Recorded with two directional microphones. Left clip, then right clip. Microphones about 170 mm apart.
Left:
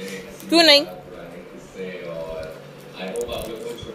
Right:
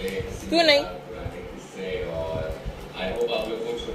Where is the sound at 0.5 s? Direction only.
55° left (ahead or behind).